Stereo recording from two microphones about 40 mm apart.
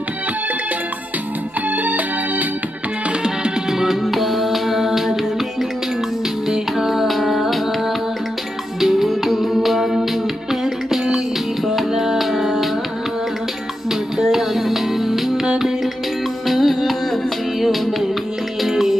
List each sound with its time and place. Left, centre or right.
1.8 s music: right
3.7 s music: centre
8.8 s music: centre
14.1 s music: centre
18.6 s music: centre